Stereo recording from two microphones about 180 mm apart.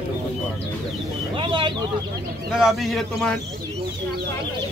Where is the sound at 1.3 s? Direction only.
30° right (ahead or behind).